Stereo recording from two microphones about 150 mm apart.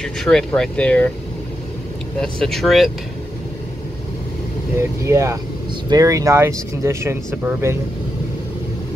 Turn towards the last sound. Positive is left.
turn(degrees=-15)  # may be behind; listen again after turning